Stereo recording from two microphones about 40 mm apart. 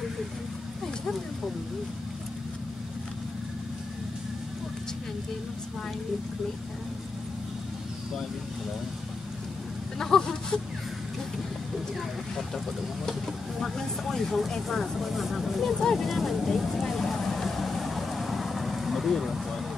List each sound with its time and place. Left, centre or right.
9.9 s speech: centre
12.0 s speech: centre
15.0 s speech: centre
15.8 s vehicle: centre